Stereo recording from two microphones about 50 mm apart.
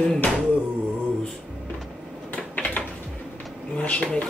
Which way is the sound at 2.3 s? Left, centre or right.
Left.